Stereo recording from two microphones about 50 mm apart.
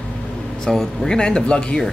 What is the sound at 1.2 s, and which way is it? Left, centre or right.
Speech, centre.